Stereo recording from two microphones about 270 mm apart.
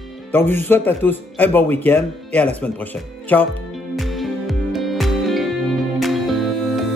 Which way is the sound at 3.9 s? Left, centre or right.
Centre.